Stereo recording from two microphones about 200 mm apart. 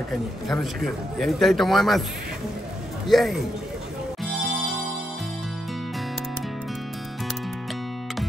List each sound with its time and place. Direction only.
0.1 s a man's voice: centre (ahead or behind)
3.1 s a man's voice: centre (ahead or behind)
4.2 s music: centre (ahead or behind)